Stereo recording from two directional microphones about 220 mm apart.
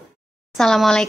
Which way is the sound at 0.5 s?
Centre (ahead or behind).